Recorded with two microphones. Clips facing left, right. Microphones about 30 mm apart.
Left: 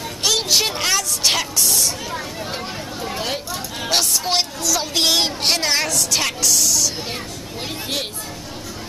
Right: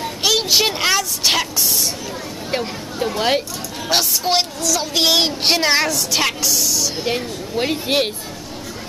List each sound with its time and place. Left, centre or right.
0.0 s vehicle: centre
3.2 s speech: right
3.9 s music: centre
7.5 s speech: right